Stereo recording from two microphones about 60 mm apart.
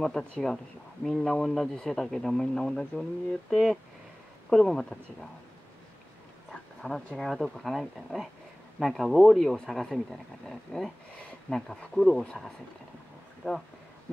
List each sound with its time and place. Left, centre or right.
0.0 s speech: centre
3.4 s speech: centre
6.8 s speech: left
7.2 s speech: centre
13.4 s speech: centre